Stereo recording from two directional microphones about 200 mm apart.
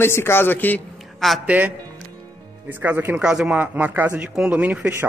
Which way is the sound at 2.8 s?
10° right (ahead or behind).